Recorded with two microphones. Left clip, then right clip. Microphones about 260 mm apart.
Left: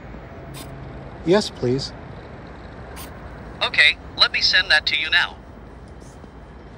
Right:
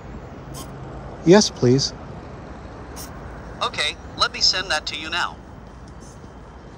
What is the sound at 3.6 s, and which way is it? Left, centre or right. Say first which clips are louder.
Speech: left 8 dB; right.